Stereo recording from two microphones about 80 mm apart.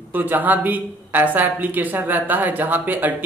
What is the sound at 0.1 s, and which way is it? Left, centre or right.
A woman's voice, right.